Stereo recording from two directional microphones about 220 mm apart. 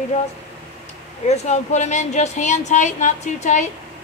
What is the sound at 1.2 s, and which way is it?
Speech, 30° left (ahead or behind).